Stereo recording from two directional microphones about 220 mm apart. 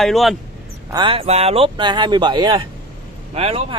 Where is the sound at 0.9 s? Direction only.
25° right (ahead or behind).